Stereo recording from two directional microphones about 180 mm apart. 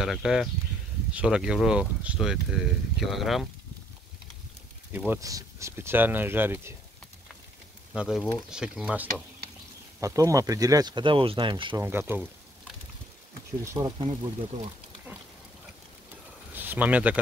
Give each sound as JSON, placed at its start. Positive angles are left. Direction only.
{"t": 0.0, "sound": "speech", "side_deg": 0}
{"t": 4.9, "sound": "speech", "side_deg": -10}
{"t": 7.9, "sound": "speech", "side_deg": -5}
{"t": 9.9, "sound": "speech", "side_deg": -15}
{"t": 11.8, "sound": "pour", "side_deg": -10}
{"t": 13.7, "sound": "speech", "side_deg": -20}
{"t": 16.5, "sound": "speech", "side_deg": -10}